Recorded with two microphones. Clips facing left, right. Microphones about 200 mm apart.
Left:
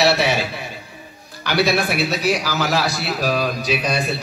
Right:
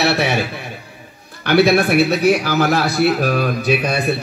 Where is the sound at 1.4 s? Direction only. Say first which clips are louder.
Right 6 dB; 55° right (ahead or behind).